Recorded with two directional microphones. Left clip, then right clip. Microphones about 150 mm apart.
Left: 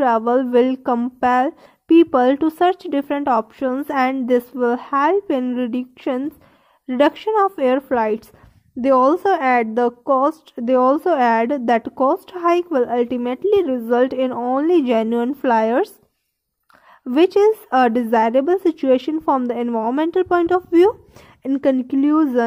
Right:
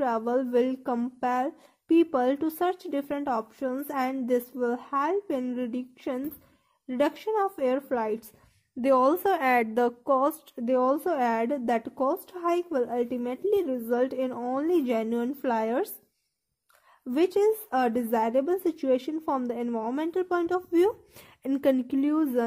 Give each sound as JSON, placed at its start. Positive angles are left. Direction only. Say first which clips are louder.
{"t": 0.0, "sound": "a woman's voice", "louder": "left 10 dB", "side_deg": 40}
{"t": 8.8, "sound": "a woman's voice", "louder": "left 8 dB", "side_deg": 20}
{"t": 10.6, "sound": "a woman's voice", "louder": "left 9 dB", "side_deg": 35}
{"t": 17.1, "sound": "a woman's voice", "louder": "left 10 dB", "side_deg": 35}
{"t": 21.4, "sound": "speech", "louder": "left 7 dB", "side_deg": 20}
{"t": 22.1, "sound": "a woman's voice", "louder": "left 10 dB", "side_deg": 30}